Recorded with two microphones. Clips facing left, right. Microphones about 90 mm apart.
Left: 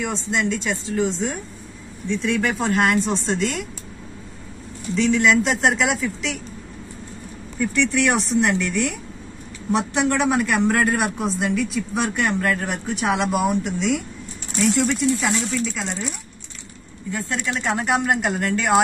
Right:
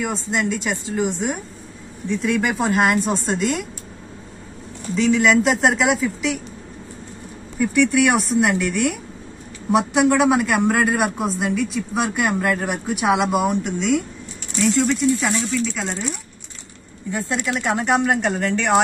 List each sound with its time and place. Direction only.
0.0 s a man's voice: 5° right (ahead or behind)
4.9 s a man's voice: centre (ahead or behind)
7.6 s a man's voice: 10° right (ahead or behind)
17.1 s speech: 20° right (ahead or behind)
17.6 s a man's voice: centre (ahead or behind)